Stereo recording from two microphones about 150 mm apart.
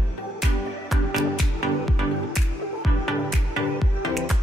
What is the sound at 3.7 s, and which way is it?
Music, centre (ahead or behind).